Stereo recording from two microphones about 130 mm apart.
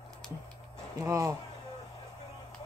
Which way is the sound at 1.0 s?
25° right (ahead or behind).